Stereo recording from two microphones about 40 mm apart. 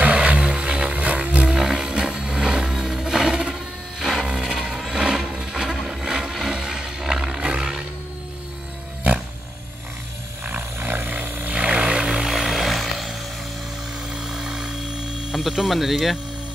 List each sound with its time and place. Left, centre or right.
0.2 s music: right; by 4.3 s centre
4.3 s vehicle: centre
6.0 s vehicle: centre
6.5 s music: centre
10.4 s vehicle: right
12.3 s a sound: centre
14.1 s a sound: centre
15.3 s speech: centre